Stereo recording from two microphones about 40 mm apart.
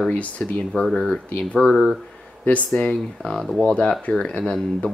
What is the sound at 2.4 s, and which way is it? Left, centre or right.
Speech, left.